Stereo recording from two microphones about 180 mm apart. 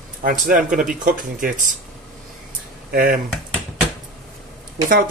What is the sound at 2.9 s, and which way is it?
Speech, 50° right (ahead or behind).